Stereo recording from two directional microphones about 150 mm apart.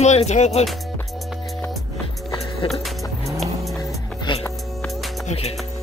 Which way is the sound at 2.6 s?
35° left (ahead or behind).